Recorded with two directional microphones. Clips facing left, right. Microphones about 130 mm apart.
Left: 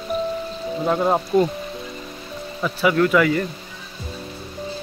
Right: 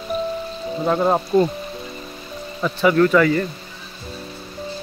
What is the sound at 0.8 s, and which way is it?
Speech, centre (ahead or behind).